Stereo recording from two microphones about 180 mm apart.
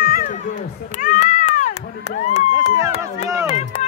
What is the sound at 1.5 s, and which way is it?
Crowd, 40° left (ahead or behind).